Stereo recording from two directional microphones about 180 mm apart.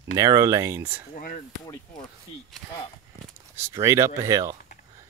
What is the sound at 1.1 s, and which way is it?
Speech, 45° left (ahead or behind).